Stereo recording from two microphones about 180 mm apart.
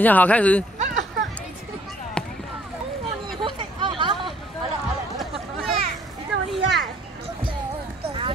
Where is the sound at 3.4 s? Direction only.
25° right (ahead or behind).